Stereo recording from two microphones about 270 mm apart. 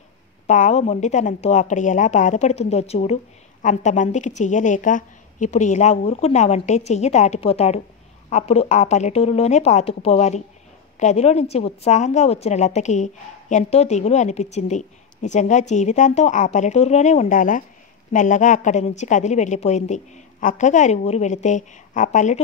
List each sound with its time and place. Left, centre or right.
0.5 s a woman's voice: left